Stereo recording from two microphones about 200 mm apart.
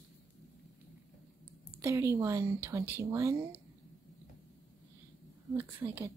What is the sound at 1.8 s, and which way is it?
A woman's voice, 15° right (ahead or behind).